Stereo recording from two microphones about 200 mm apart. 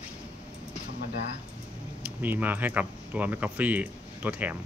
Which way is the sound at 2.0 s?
10° right (ahead or behind).